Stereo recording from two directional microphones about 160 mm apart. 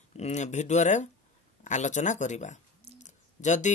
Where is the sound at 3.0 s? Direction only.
50° left (ahead or behind).